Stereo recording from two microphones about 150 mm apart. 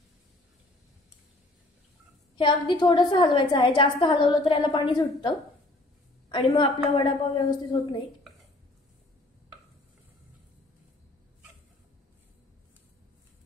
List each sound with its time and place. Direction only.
2.3 s a woman's voice: 35° left (ahead or behind)